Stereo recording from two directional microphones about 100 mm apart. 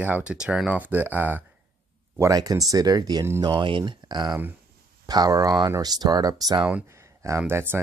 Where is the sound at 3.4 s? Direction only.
55° right (ahead or behind).